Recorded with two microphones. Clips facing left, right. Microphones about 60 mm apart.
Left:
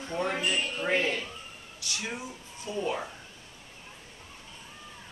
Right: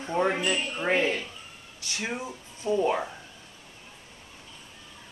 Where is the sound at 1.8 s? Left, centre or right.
Right.